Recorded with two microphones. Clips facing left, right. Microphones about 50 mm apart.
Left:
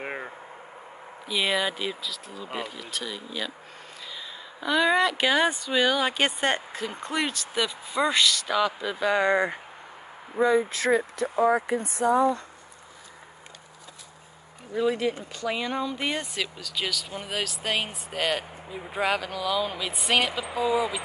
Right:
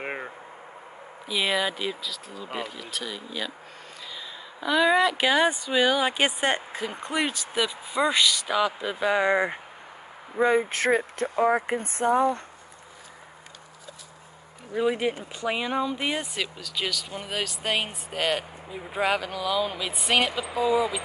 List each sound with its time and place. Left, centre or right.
0.0 s a sound: centre
1.2 s speech: centre
4.6 s speech: centre
10.4 s speech: right
14.7 s speech: centre